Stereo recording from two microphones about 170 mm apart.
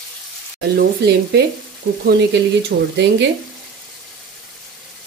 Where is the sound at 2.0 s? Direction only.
85° right.